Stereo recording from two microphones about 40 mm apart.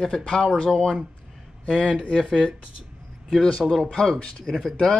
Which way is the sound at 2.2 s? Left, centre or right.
Centre.